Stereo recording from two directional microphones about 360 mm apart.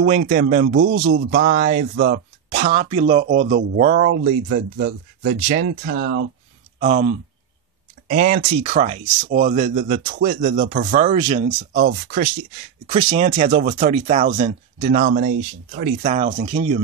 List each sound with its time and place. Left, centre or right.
0.0 s speech: right